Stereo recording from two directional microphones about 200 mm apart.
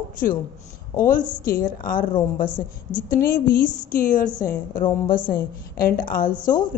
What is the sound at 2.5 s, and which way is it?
Speech, 10° left (ahead or behind).